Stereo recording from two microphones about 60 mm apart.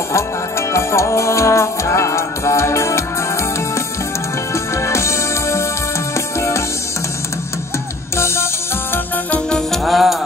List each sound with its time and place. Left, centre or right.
0.1 s music: left
4.7 s music: left
9.7 s music: centre